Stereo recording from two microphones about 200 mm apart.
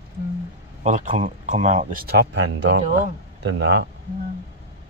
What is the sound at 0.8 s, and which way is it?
Speech, 40° right (ahead or behind).